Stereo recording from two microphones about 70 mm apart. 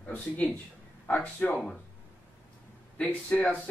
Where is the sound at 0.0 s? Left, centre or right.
Centre.